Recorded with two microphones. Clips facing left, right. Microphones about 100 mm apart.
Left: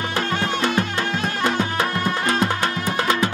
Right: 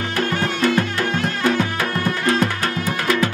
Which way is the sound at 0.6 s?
25° left (ahead or behind).